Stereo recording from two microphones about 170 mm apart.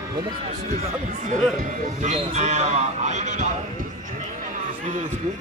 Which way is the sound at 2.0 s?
40° right (ahead or behind).